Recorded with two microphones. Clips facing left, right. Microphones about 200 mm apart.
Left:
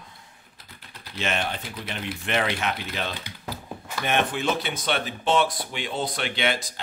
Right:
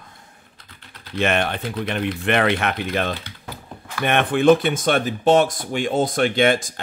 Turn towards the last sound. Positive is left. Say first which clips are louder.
# right 9 dB
turn(degrees=-50)  # may be behind; listen again after turning